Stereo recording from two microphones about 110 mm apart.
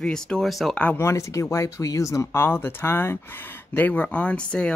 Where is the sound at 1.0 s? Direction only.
25° left (ahead or behind).